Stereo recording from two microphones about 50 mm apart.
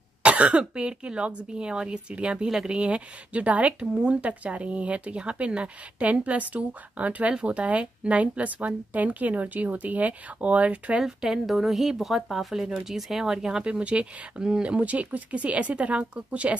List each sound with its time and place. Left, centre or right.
0.2 s speech: right
11.0 s speech: centre
11.4 s a woman's voice: centre; by 16.5 s right